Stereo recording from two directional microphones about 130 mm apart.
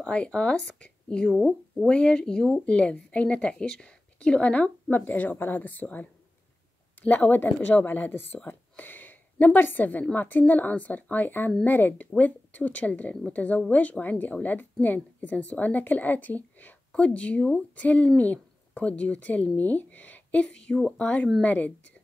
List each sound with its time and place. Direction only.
0.0 s speech: 10° left (ahead or behind)
1.9 s speech: 10° left (ahead or behind)